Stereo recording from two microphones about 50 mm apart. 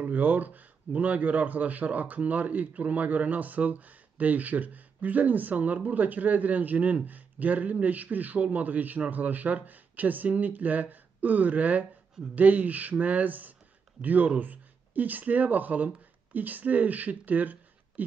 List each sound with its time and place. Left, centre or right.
0.0 s a man's voice: right